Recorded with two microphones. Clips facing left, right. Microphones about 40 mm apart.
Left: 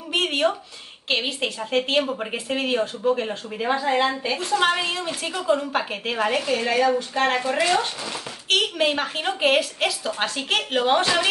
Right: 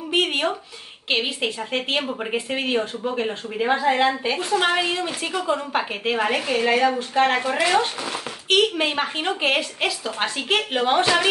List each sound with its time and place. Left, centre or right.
0.1 s a woman's voice: centre; by 8.2 s right
8.5 s a woman's voice: centre